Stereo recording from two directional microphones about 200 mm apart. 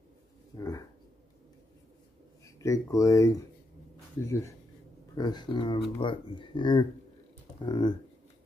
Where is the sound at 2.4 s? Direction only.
15° left (ahead or behind).